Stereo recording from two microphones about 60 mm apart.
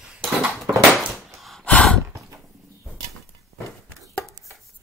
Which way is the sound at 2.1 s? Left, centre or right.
Right.